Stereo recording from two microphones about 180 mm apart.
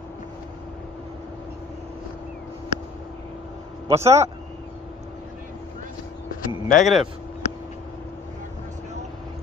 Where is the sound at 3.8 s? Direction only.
15° right (ahead or behind).